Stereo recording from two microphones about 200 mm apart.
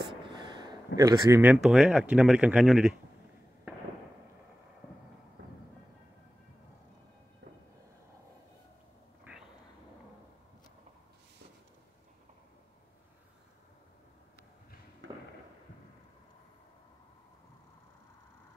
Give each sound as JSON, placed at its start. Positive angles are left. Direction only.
{"t": 0.2, "sound": "a sound", "side_deg": -25}
{"t": 0.9, "sound": "speech", "side_deg": -15}
{"t": 5.4, "sound": "music", "side_deg": -65}